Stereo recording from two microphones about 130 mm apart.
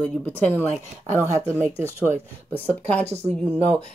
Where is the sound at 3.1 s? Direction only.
55° right (ahead or behind).